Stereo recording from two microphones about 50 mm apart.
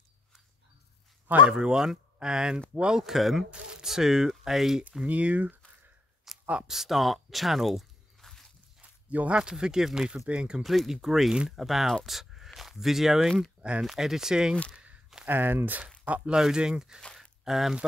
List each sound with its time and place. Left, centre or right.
1.4 s speech: centre
3.0 s speech: centre
3.4 s speech: centre
5.0 s speech: right
6.3 s a sound: centre
6.7 s speech: centre
9.3 s speech: centre
10.6 s speech: centre
12.1 s a sound: centre
12.5 s speech: centre
13.6 s a sound: right
13.8 s speech: centre
15.2 s speech: right
16.3 s speech: centre